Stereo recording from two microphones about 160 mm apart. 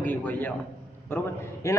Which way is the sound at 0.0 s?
10° left (ahead or behind).